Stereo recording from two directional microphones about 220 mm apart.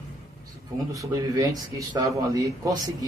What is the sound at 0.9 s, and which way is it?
Speech, 15° right (ahead or behind).